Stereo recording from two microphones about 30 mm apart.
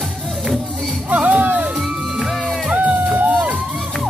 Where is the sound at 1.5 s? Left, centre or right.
Right.